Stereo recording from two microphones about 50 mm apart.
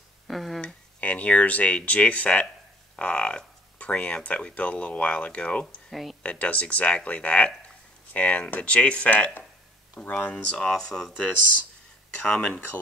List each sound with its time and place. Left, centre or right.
0.3 s speech: centre
0.6 s speech: left
5.9 s speech: centre
6.2 s speech: left; by 11.1 s centre
12.2 s speech: left